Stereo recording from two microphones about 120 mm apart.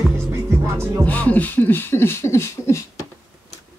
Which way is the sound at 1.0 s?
15° left (ahead or behind).